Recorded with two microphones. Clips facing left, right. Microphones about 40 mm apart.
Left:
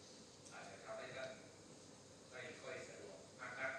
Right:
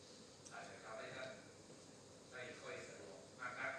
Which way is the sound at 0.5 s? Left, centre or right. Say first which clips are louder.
Even; right.